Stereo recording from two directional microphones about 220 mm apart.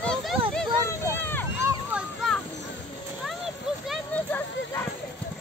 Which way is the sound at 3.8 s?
Centre (ahead or behind).